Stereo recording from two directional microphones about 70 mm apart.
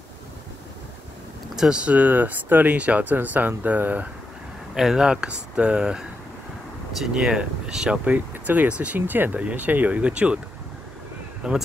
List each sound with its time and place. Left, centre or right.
1.5 s speech: centre
4.7 s speech: centre
7.1 s speech: centre
11.4 s speech: centre